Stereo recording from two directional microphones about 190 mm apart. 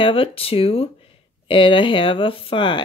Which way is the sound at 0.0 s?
30° left (ahead or behind).